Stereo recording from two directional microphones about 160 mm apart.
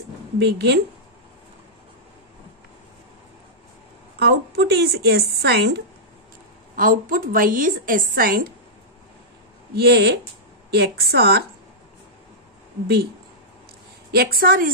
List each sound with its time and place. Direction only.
0.4 s a woman's voice: 90° right
4.2 s a woman's voice: 90° right
6.7 s a woman's voice: 60° right (ahead or behind)
9.8 s a woman's voice: 85° right
12.8 s speech: 85° right
14.1 s a woman's voice: 75° right (ahead or behind)